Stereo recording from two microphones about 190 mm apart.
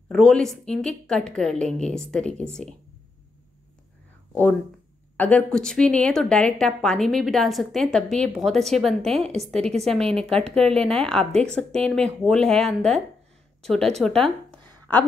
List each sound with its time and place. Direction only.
0.1 s a woman's voice: 5° left (ahead or behind)
5.1 s a woman's voice: 5° left (ahead or behind)
14.5 s a sound: 10° left (ahead or behind)